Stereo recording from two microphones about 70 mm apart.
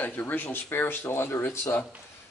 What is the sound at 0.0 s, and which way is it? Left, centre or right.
Speech, left.